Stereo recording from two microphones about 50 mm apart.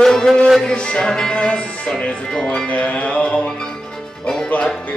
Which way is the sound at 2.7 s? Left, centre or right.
Left.